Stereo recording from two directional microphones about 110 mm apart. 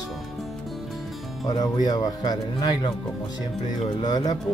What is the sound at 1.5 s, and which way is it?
Speech, 35° left (ahead or behind).